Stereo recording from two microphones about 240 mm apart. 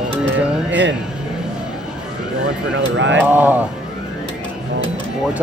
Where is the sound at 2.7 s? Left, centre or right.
Right.